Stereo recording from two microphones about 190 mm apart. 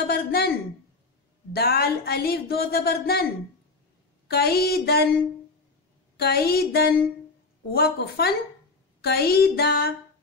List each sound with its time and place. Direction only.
0.0 s speech: 55° left (ahead or behind)
4.3 s speech: 55° left (ahead or behind)
6.1 s speech: 55° left (ahead or behind)